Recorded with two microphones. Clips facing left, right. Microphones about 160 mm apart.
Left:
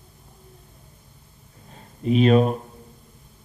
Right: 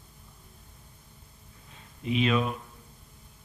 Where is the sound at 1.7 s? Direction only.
40° left (ahead or behind).